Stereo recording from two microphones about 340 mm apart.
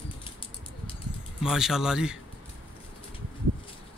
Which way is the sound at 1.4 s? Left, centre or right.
Centre.